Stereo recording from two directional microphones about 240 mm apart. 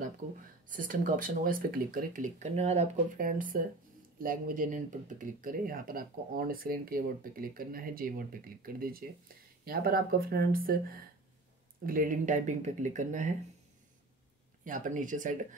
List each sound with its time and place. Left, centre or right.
0.7 s speech: right
14.6 s speech: right